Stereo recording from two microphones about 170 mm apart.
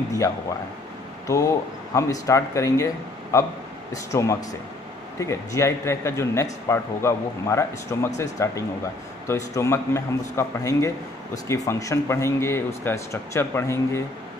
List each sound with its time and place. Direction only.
1.2 s a man's voice: 20° left (ahead or behind)